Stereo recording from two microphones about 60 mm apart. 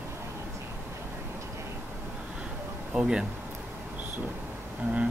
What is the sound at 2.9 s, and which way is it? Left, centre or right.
Speech, centre.